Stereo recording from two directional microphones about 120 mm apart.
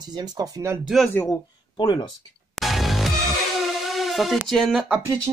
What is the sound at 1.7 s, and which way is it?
Speech, 40° left (ahead or behind).